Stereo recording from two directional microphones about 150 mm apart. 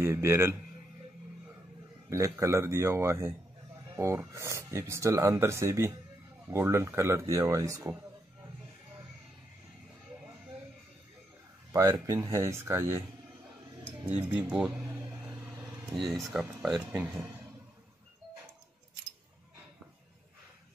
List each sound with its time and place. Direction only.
0.0 s speech: 20° right (ahead or behind)
2.0 s speech: 20° right (ahead or behind)
11.7 s speech: 20° right (ahead or behind)
14.0 s speech: 10° right (ahead or behind)
16.0 s speech: centre (ahead or behind)